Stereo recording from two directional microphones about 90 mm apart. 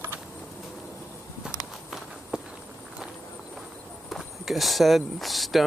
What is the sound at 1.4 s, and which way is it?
Walk, 5° right (ahead or behind).